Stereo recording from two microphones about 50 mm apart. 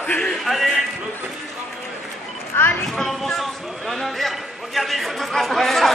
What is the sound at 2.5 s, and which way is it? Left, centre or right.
Clip-clop, left.